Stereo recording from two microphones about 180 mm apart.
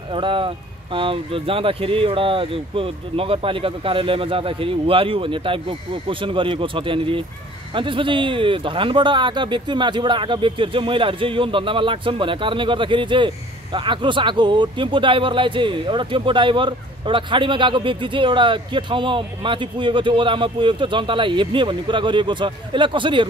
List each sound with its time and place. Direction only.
0.1 s speech: 30° right (ahead or behind)